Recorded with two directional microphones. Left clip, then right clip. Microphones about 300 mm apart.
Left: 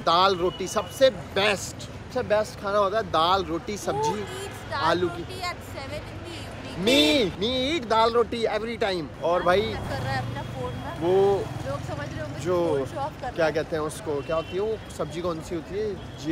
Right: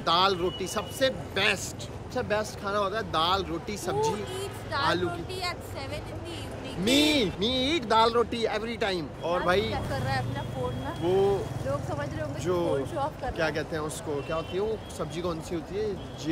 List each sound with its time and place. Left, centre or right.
0.0 s speech: centre
4.7 s speech: centre
6.8 s speech: centre
9.7 s speech: centre
12.4 s speech: centre
12.9 s speech: centre
13.4 s speech: centre